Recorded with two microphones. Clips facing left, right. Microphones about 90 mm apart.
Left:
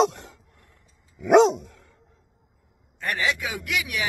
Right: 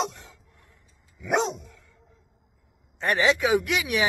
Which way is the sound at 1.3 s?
75° left (ahead or behind).